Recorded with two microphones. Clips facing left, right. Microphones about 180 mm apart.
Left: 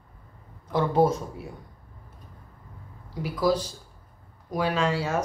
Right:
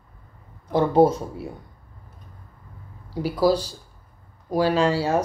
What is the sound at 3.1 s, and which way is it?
Speech, 30° right (ahead or behind).